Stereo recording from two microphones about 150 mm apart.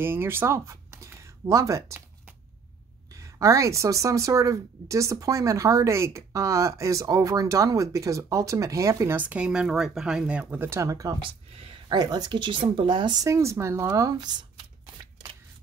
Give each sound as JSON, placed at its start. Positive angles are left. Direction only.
{"t": 0.0, "sound": "speech", "side_deg": -15}
{"t": 3.1, "sound": "speech", "side_deg": -20}